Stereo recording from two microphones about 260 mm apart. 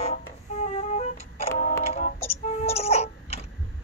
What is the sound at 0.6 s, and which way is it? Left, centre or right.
Music, left.